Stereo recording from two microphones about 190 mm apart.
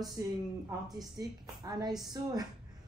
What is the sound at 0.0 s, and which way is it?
A woman's voice, 20° right (ahead or behind).